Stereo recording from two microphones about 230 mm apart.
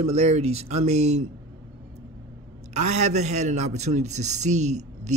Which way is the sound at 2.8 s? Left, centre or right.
Right.